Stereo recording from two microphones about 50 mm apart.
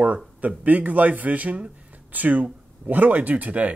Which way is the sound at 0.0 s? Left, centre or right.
Right.